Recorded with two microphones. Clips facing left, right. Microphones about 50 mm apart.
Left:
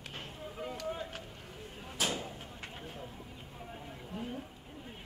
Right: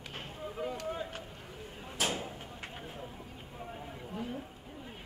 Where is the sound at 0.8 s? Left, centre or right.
Centre.